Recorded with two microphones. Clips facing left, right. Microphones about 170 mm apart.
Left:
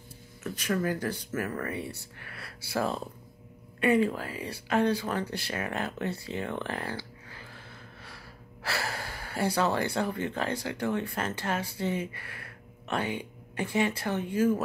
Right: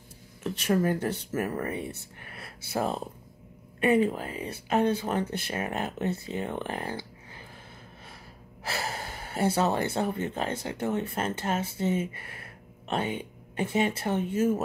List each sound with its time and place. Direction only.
0.4 s speech: 30° right (ahead or behind)
8.6 s speech: 20° right (ahead or behind)